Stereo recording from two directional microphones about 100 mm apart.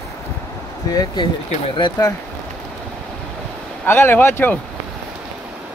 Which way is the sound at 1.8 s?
50° left (ahead or behind).